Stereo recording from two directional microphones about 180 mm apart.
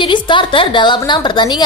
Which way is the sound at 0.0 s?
25° left (ahead or behind).